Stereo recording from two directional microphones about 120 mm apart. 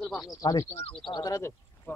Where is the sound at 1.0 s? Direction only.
35° left (ahead or behind).